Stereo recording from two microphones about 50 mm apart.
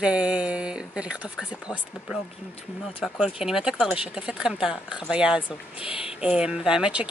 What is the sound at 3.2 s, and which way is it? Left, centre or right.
Speech, centre.